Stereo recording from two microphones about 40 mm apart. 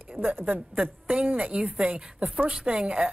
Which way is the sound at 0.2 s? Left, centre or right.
Right.